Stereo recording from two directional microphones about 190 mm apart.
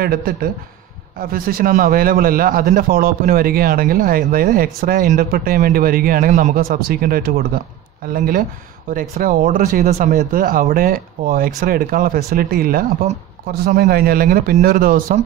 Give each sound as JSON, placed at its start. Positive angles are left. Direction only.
{"t": 0.0, "sound": "a man's voice", "side_deg": -50}